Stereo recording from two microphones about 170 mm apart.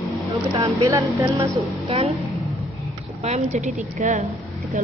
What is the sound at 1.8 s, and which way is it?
Speech, 35° right (ahead or behind).